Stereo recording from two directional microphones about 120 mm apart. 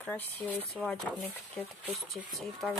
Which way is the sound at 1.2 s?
15° left (ahead or behind).